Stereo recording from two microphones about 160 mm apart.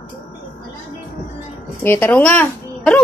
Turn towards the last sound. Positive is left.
turn(degrees=10)  # may be behind; listen again after turning